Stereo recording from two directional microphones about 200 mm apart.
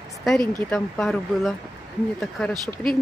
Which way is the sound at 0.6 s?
5° left (ahead or behind).